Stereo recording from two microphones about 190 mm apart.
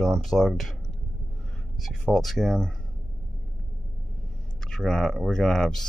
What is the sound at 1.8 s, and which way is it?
Speech, centre (ahead or behind).